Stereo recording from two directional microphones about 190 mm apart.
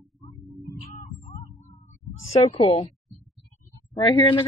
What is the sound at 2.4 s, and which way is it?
Speech, 35° left (ahead or behind).